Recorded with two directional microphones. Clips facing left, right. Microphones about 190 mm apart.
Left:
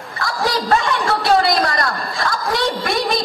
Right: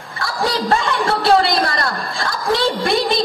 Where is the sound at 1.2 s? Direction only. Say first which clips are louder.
Right 1 dB; 30° right (ahead or behind).